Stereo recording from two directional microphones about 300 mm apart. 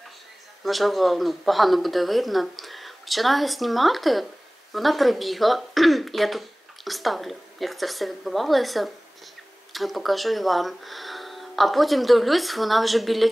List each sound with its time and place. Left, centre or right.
0.7 s speech: centre